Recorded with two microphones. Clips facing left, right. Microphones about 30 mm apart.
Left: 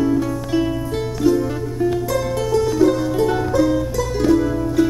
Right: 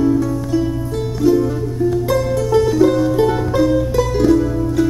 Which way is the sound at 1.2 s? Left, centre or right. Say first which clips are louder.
Right 3 dB; centre.